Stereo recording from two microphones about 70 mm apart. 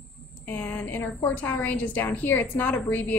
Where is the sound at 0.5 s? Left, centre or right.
Left.